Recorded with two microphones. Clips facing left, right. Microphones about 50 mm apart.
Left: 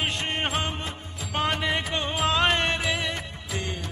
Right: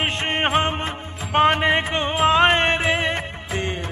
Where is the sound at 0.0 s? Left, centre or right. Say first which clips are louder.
Right 6 dB; right.